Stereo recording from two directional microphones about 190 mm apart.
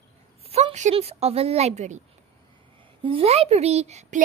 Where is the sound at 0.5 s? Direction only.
35° right (ahead or behind).